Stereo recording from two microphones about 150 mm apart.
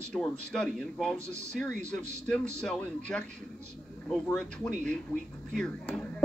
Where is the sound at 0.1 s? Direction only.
5° left (ahead or behind).